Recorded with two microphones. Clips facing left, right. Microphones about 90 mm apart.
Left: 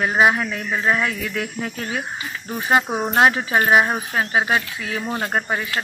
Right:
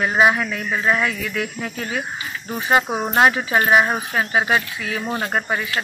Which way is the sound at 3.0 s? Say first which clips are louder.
Even; 10° left (ahead or behind).